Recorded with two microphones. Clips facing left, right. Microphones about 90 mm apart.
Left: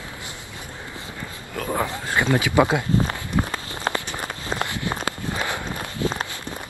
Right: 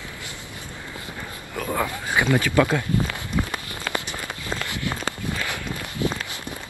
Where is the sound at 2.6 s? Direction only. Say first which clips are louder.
Left 2 dB; 25° left (ahead or behind).